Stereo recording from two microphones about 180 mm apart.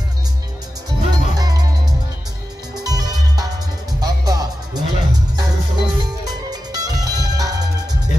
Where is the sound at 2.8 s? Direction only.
20° right (ahead or behind).